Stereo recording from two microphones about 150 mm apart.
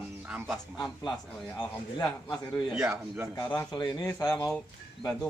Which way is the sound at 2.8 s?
15° right (ahead or behind).